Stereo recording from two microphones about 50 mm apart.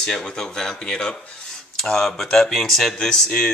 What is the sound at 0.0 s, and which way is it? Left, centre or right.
Speech, centre.